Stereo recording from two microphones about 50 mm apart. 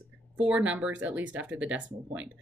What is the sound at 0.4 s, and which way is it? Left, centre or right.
Speech, right.